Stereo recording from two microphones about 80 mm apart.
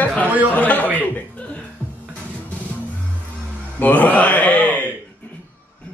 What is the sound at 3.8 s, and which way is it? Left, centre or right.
Speech, centre.